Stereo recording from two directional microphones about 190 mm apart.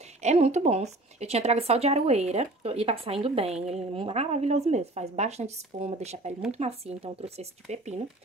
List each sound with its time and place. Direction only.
0.2 s speech: 35° right (ahead or behind)